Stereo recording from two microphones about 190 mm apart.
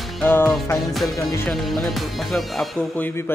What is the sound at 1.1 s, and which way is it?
Music, 15° left (ahead or behind).